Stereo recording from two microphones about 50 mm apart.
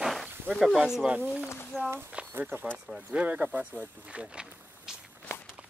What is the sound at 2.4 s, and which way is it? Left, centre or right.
Speech, right.